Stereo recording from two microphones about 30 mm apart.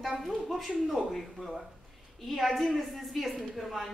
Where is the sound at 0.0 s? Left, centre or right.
Centre.